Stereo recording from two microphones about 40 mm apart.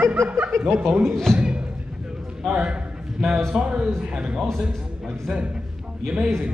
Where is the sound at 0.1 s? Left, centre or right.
Right.